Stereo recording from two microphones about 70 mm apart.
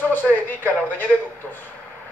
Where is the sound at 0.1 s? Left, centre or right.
Left.